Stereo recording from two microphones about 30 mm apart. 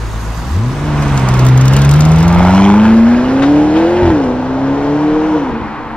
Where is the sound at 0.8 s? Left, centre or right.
Centre.